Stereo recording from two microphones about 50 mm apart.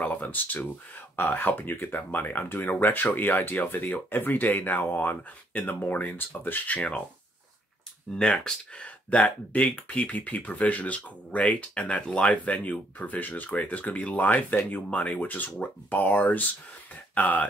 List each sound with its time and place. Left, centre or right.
0.0 s speech: left
8.2 s speech: centre
8.8 s speech: left